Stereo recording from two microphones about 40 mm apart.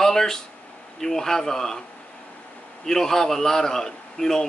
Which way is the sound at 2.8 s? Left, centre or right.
Centre.